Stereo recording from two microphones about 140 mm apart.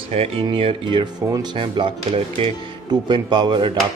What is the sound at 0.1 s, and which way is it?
Speech, 45° right (ahead or behind).